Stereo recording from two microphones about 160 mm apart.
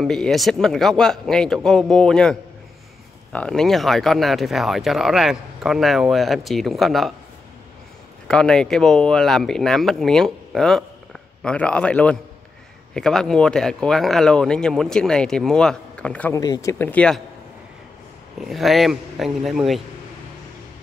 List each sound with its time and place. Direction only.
0.0 s speech: 5° left (ahead or behind)
3.3 s speech: 5° left (ahead or behind)
8.3 s speech: 5° left (ahead or behind)
16.3 s speech: 25° left (ahead or behind); by 17.2 s 10° left (ahead or behind)
18.4 s speech: centre (ahead or behind)